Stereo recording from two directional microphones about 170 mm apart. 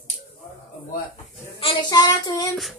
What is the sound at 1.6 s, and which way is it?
Speech, 30° left (ahead or behind).